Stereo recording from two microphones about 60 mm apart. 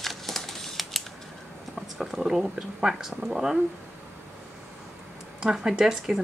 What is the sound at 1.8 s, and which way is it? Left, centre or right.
Speech, centre.